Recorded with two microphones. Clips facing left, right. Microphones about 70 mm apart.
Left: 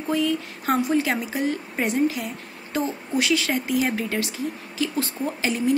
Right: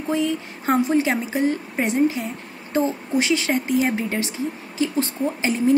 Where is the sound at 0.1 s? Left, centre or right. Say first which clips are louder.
Right 1 dB; right.